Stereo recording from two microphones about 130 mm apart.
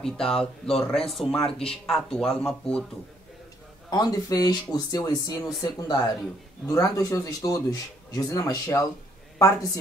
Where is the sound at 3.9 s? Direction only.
30° left (ahead or behind).